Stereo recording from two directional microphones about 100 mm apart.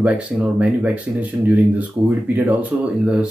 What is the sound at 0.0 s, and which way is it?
Speech, 10° right (ahead or behind).